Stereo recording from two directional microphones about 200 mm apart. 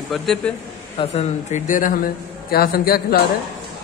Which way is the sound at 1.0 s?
35° left (ahead or behind).